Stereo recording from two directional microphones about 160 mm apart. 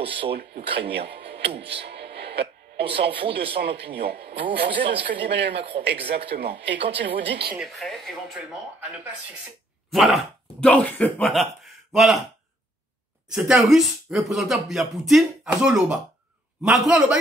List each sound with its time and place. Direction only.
0.0 s speech: 35° right (ahead or behind)
0.4 s a man's voice: 90° right
1.6 s music: 90° right
3.1 s speech: 35° right (ahead or behind)
3.5 s a man's voice: 90° right
7.5 s speech: centre (ahead or behind)
9.8 s speech: centre (ahead or behind)
13.3 s speech: 5° right (ahead or behind)